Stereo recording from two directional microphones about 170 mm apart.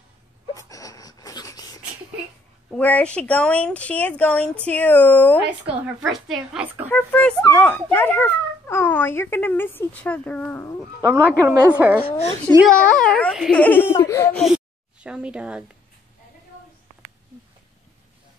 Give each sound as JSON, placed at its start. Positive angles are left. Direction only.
{"t": 0.6, "sound": "a sound", "side_deg": 20}
{"t": 2.7, "sound": "speech", "side_deg": 5}
{"t": 6.2, "sound": "speech", "side_deg": 0}
{"t": 6.9, "sound": "speech", "side_deg": 10}
{"t": 11.0, "sound": "a woman's voice", "side_deg": -15}
{"t": 12.0, "sound": "speech", "side_deg": 35}
{"t": 12.6, "sound": "speech", "side_deg": 5}
{"t": 14.3, "sound": "speech", "side_deg": -5}